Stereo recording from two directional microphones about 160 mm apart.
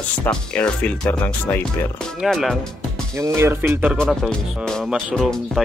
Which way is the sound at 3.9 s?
5° left (ahead or behind).